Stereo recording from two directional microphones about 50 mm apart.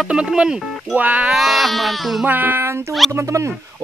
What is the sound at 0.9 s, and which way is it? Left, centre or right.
Speech, right.